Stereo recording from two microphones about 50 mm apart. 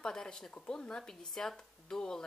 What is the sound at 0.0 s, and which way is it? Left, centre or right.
Speech, centre.